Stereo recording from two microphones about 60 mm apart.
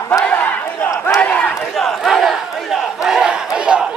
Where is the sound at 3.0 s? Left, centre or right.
Centre.